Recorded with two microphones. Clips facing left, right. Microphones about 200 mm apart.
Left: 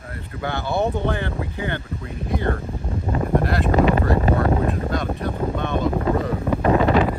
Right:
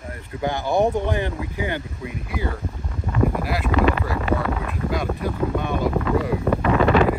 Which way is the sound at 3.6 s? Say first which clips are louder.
Even; 30° left (ahead or behind).